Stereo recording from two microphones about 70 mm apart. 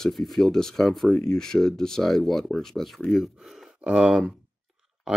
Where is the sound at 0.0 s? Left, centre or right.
Centre.